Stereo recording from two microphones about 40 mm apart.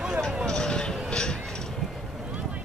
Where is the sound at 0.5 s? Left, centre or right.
Centre.